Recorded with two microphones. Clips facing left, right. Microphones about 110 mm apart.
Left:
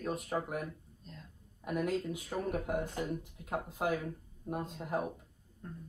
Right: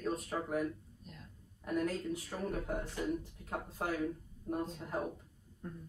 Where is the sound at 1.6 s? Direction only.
15° left (ahead or behind).